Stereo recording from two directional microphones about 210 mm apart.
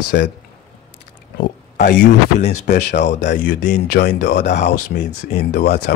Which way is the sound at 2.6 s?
50° left (ahead or behind).